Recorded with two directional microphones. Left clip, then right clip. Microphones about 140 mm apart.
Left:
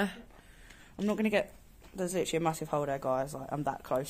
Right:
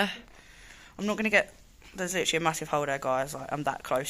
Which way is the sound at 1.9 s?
10° left (ahead or behind).